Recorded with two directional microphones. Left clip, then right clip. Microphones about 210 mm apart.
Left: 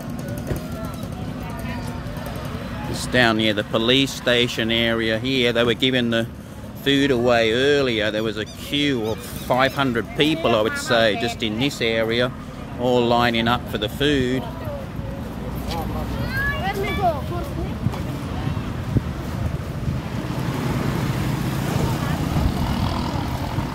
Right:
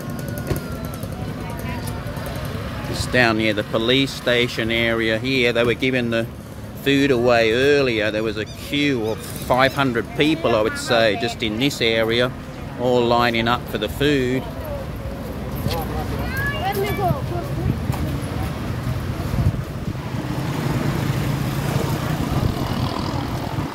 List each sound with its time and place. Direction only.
3.1 s speech: 10° left (ahead or behind)
20.6 s vehicle: 50° right (ahead or behind)